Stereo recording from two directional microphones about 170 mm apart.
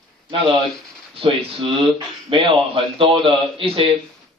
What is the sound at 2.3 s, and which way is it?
A man's voice, 30° right (ahead or behind).